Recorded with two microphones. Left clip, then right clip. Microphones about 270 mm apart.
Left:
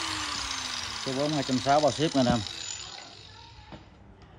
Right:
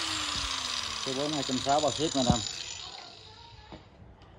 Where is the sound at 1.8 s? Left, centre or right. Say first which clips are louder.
Left 4 dB; left.